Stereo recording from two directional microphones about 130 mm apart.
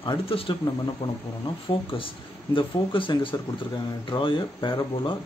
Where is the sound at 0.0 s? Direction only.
40° left (ahead or behind).